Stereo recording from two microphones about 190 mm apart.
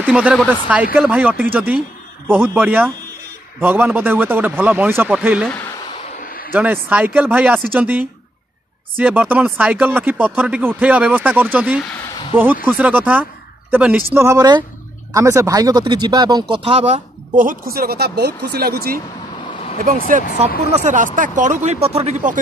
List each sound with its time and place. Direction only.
0.0 s speech: 5° right (ahead or behind)
6.1 s a sound: 50° left (ahead or behind)
6.5 s speech: 10° right (ahead or behind); by 18.9 s 55° right (ahead or behind)
20.1 s speech: 45° right (ahead or behind)